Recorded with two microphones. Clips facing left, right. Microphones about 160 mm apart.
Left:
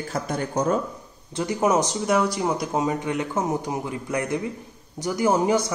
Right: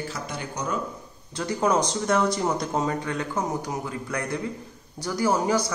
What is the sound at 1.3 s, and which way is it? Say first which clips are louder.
Speech: left 2 dB; 20° left (ahead or behind).